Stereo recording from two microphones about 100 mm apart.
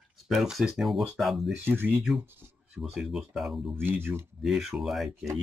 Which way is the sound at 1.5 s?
20° right (ahead or behind).